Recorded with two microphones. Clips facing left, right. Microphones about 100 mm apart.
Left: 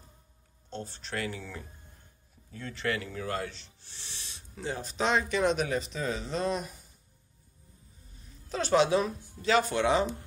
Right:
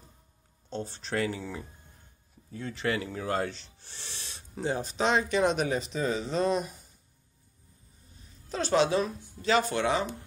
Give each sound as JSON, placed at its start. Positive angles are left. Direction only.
{"t": 1.0, "sound": "speech", "side_deg": -35}
{"t": 2.5, "sound": "speech", "side_deg": -10}
{"t": 3.1, "sound": "speech", "side_deg": -25}
{"t": 3.3, "sound": "speech", "side_deg": -45}
{"t": 4.6, "sound": "speech", "side_deg": -25}
{"t": 5.1, "sound": "speech", "side_deg": -5}
{"t": 8.5, "sound": "a woman's voice", "side_deg": 10}